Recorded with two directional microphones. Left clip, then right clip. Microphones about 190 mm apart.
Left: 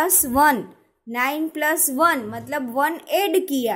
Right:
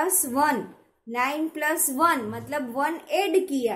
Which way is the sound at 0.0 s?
40° left (ahead or behind).